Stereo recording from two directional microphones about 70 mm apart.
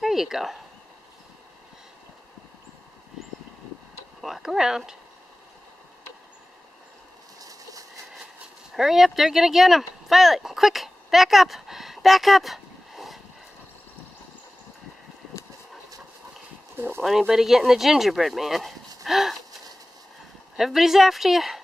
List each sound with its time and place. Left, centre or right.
0.0 s speech: centre
4.2 s speech: centre
7.3 s vehicle: right
8.7 s speech: centre
16.7 s speech: right
17.3 s speech: centre
20.5 s speech: centre